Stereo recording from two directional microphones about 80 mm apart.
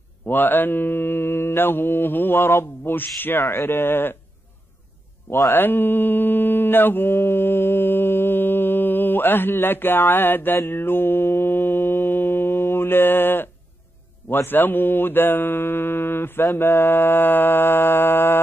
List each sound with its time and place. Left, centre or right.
0.3 s mantra: left
5.5 s mantra: left